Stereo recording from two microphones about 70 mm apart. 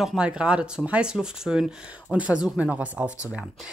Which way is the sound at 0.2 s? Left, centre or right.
Centre.